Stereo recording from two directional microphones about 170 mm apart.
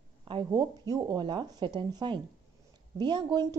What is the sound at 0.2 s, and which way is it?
A woman's voice, 25° right (ahead or behind).